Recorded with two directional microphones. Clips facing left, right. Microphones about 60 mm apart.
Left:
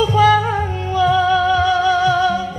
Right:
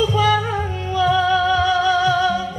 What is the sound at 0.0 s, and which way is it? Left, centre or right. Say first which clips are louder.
Music: left 4 dB; left.